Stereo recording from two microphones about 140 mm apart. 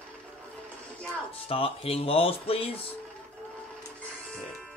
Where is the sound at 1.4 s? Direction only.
40° left (ahead or behind).